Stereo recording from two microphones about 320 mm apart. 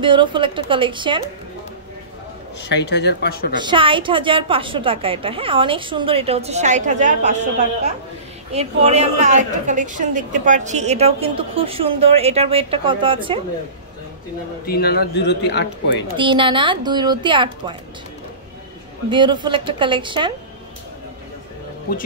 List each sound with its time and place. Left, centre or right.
0.0 s a woman's voice: centre
2.7 s speech: left
3.5 s a woman's voice: centre
8.5 s a woman's voice: centre
14.7 s speech: left
16.2 s a woman's voice: centre
19.0 s a woman's voice: centre